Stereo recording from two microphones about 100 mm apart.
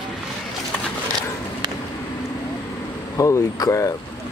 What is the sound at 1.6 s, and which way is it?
Vehicle, 45° right (ahead or behind).